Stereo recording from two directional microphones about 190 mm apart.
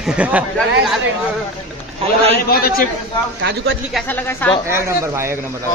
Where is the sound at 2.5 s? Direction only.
50° left (ahead or behind).